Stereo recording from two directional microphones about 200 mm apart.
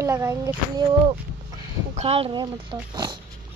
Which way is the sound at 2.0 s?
30° right (ahead or behind).